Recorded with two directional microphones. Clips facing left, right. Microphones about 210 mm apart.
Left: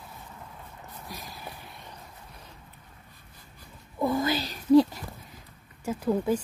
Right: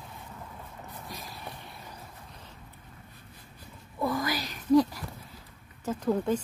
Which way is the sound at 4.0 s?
25° left (ahead or behind).